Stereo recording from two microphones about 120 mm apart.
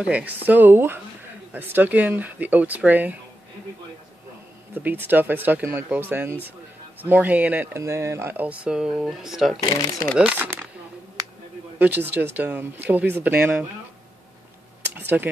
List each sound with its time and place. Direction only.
0.0 s speech: 10° right (ahead or behind)
4.7 s speech: 15° right (ahead or behind)
9.6 s speech: 30° left (ahead or behind)
10.1 s speech: 10° right (ahead or behind)
11.8 s speech: 15° right (ahead or behind)
15.0 s computer keyboard: 15° right (ahead or behind)